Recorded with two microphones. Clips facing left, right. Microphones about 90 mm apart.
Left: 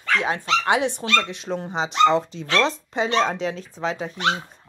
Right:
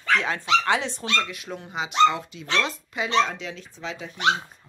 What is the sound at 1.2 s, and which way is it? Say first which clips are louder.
Speech: left 4 dB; 25° left (ahead or behind).